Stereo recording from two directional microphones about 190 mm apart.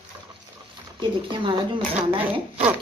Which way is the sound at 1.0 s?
25° right (ahead or behind).